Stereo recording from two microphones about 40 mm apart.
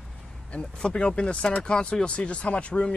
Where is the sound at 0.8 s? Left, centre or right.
Left.